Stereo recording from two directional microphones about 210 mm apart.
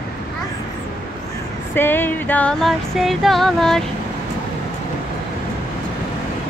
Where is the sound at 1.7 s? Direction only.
10° left (ahead or behind).